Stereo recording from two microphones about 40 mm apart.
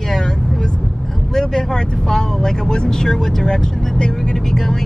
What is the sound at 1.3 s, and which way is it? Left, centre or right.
Speech, centre.